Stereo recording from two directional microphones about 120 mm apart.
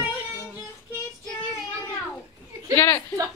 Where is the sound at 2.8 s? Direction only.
20° left (ahead or behind).